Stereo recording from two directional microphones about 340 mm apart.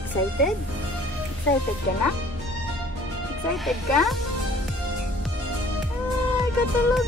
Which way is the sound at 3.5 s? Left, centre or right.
Centre.